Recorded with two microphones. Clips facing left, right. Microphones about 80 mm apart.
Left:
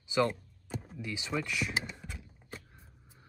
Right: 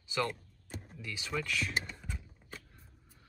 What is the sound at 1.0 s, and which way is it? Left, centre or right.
Speech, left.